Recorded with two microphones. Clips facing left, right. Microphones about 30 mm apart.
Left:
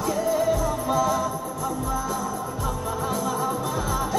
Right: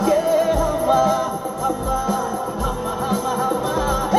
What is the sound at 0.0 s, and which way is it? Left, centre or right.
Music, right.